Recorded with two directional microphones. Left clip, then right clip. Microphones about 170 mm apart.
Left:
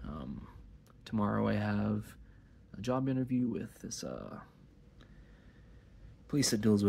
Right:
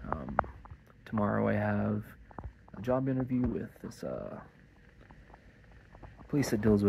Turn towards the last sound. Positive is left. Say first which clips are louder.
# right 2 dB
turn(degrees=20)  # may be behind; listen again after turning